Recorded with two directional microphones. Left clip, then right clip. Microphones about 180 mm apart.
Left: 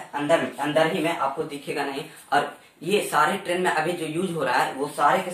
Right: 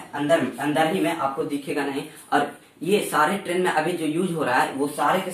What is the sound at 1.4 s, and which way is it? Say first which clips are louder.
Speech: right 2 dB; 10° left (ahead or behind).